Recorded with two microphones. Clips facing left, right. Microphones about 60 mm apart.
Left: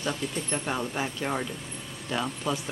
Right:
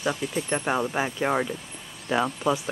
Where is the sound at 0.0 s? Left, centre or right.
Centre.